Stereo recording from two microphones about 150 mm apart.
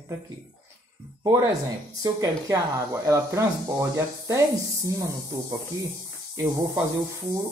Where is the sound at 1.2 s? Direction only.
25° right (ahead or behind).